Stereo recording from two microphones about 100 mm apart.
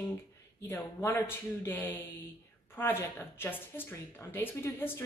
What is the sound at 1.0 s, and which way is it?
A woman's voice, 25° left (ahead or behind).